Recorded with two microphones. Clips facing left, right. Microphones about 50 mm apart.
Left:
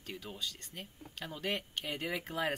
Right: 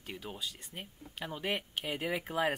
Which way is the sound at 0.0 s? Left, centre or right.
Centre.